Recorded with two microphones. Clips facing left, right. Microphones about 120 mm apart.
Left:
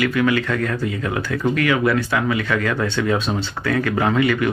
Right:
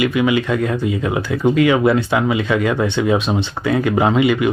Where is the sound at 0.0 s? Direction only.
15° right (ahead or behind).